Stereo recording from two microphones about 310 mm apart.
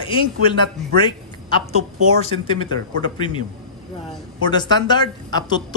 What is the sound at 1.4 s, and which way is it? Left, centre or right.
A man's voice, centre.